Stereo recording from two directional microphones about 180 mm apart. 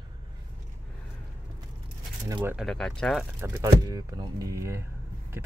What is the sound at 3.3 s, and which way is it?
Speech, 15° right (ahead or behind).